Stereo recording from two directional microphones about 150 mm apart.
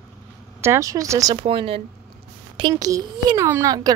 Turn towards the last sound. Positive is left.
turn(degrees=-25)  # may be behind; listen again after turning